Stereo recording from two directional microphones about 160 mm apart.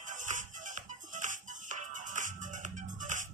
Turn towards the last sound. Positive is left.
turn(degrees=-50)  # may be behind; listen again after turning